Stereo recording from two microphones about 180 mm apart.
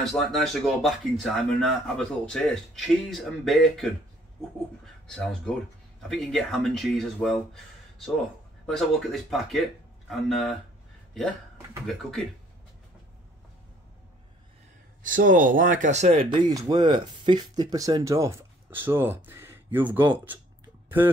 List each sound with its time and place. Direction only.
0.0 s speech: centre (ahead or behind)
4.8 s speech: 5° left (ahead or behind)
15.0 s speech: 50° right (ahead or behind)
16.3 s speech: 20° right (ahead or behind)